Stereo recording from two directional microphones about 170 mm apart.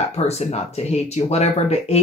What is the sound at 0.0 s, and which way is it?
Speech, 40° left (ahead or behind).